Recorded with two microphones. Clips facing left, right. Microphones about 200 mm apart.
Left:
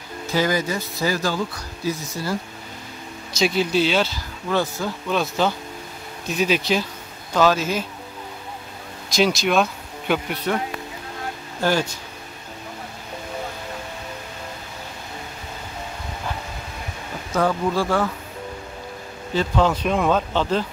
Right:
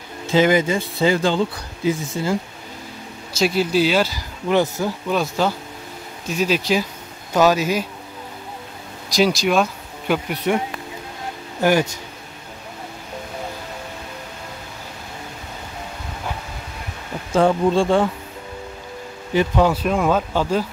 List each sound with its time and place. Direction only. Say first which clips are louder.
0.3 s speech: right 6 dB; 20° right (ahead or behind)
3.3 s speech: right 2 dB; 5° right (ahead or behind)
4.5 s speech: right 4 dB; 20° right (ahead or behind)
6.3 s speech: right 1 dB; centre (ahead or behind)
6.6 s speech: right 2 dB; 10° right (ahead or behind)
9.1 s speech: right 2 dB; 10° right (ahead or behind)
9.6 s a sound: right 1 dB; 5° right (ahead or behind)
10.5 s speech: right 4 dB; 10° right (ahead or behind)
17.3 s speech: right 5 dB; 25° right (ahead or behind)
19.3 s speech: right 3 dB; 15° right (ahead or behind)